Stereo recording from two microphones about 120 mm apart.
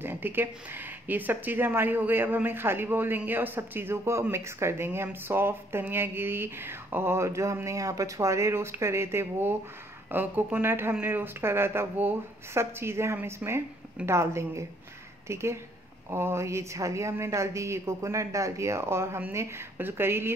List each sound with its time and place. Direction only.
0.0 s speech: 15° right (ahead or behind)